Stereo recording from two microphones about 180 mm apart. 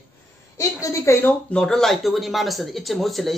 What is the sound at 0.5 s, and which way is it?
Speech, 15° left (ahead or behind).